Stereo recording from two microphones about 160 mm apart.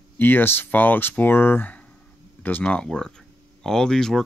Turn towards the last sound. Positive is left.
turn(degrees=5)  # may be behind; listen again after turning